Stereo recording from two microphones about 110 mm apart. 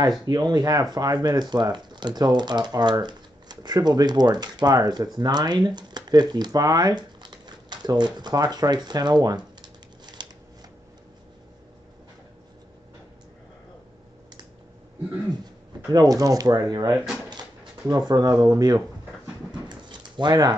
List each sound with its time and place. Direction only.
0.3 s speech: 40° right (ahead or behind)
15.9 s speech: 35° right (ahead or behind)
16.9 s speech: 5° right (ahead or behind)
17.8 s speech: 35° right (ahead or behind)
19.9 s a sound: 40° right (ahead or behind)